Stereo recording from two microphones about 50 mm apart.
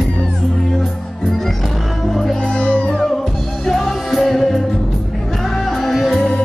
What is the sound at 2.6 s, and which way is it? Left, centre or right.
Music, left.